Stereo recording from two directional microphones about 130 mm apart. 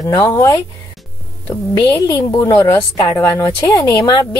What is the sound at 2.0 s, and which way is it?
A woman's voice, 25° left (ahead or behind).